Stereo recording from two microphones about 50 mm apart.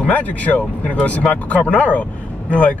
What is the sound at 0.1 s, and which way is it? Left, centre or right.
Speech, left.